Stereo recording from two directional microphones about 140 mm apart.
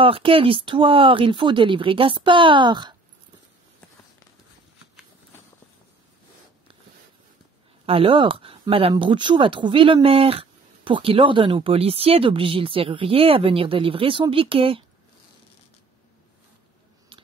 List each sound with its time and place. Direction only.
0.0 s speech: 40° right (ahead or behind)
7.8 s speech: 40° right (ahead or behind)
17.1 s a sound: 40° right (ahead or behind)